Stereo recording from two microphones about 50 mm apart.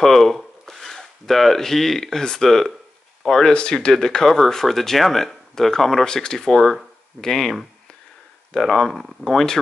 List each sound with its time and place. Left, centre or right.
0.0 s speech: centre